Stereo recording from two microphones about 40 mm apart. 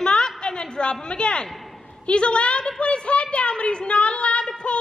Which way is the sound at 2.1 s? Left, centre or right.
Left.